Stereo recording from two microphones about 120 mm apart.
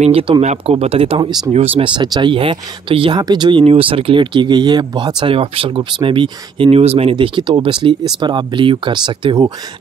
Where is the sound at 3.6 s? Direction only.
50° right (ahead or behind).